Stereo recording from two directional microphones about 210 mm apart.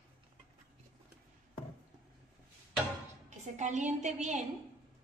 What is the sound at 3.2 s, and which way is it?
A woman's voice, 35° right (ahead or behind).